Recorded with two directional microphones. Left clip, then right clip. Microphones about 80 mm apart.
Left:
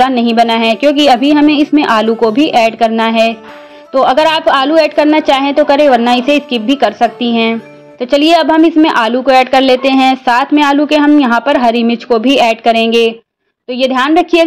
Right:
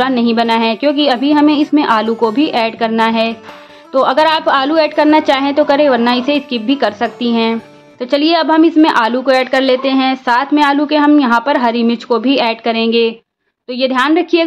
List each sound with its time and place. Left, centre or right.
0.0 s a woman's voice: left
2.1 s a woman's voice: centre
9.4 s a woman's voice: left